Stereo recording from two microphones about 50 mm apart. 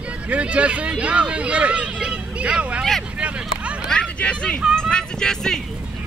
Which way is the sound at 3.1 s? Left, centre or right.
Right.